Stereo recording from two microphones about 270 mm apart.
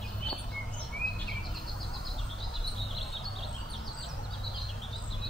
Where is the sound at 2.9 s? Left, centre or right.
Centre.